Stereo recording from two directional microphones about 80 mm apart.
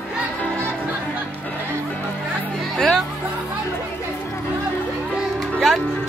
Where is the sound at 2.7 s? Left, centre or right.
Centre.